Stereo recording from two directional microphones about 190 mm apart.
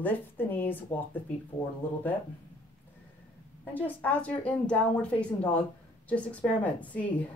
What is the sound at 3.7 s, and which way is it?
A woman's voice, 10° left (ahead or behind).